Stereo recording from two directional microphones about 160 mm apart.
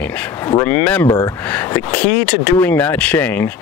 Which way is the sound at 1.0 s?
25° left (ahead or behind).